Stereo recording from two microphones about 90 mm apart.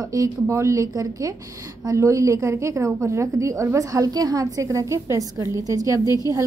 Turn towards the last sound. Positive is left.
turn(degrees=-35)  # may be behind; listen again after turning